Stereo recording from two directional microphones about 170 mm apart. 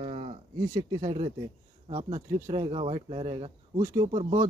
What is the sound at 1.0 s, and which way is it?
Speech, 40° right (ahead or behind).